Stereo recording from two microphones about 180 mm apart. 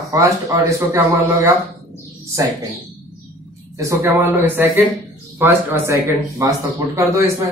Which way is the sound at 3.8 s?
15° right (ahead or behind).